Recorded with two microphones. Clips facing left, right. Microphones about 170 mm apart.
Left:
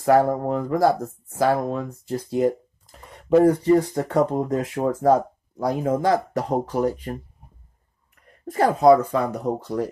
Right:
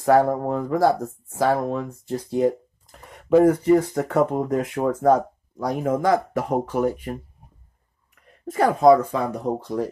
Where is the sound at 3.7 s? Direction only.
20° left (ahead or behind).